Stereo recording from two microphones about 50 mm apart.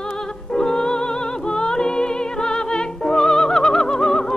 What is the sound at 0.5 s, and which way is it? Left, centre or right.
Music, centre.